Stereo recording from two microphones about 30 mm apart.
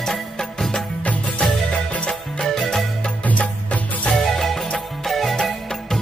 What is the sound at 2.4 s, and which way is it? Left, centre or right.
Music, centre.